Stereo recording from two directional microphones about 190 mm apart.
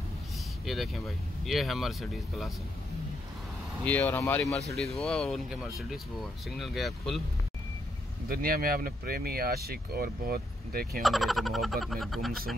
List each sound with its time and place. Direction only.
0.7 s speech: centre (ahead or behind)
3.8 s speech: 10° left (ahead or behind)
6.6 s speech: centre (ahead or behind)
8.3 s speech: 50° right (ahead or behind)
11.0 s speech: centre (ahead or behind)